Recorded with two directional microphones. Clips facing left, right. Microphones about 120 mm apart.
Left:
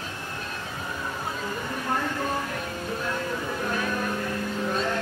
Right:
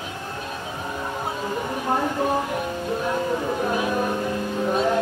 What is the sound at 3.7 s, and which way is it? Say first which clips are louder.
Music: right 4 dB; 15° right (ahead or behind).